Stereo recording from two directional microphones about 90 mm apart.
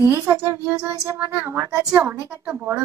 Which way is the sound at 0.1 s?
30° right (ahead or behind).